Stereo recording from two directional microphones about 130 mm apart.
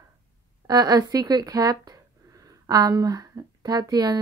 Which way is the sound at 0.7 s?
30° right (ahead or behind).